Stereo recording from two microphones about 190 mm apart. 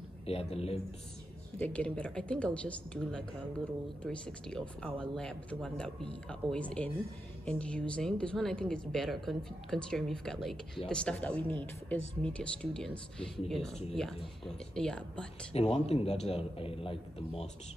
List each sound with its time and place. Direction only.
0.3 s a man's voice: 30° left (ahead or behind)
1.6 s speech: 5° left (ahead or behind)
15.5 s a man's voice: 30° left (ahead or behind)